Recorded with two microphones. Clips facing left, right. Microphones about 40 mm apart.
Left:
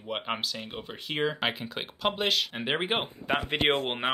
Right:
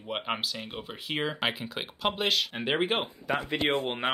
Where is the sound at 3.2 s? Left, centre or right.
Left.